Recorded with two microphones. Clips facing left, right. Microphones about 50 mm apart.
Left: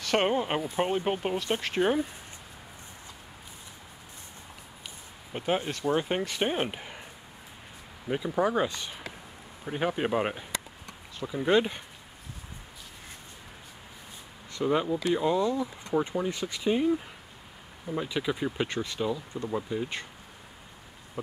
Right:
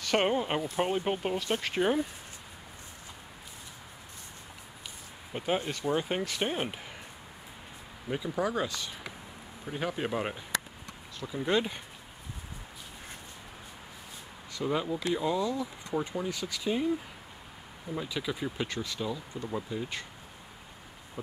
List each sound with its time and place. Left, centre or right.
0.0 s speech: centre
5.3 s speech: centre
8.1 s speech: centre
11.1 s speech: centre
14.5 s speech: centre